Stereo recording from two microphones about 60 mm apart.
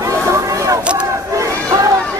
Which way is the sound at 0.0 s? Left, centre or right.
Right.